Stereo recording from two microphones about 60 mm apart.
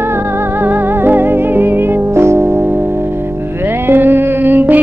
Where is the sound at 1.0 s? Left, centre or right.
Right.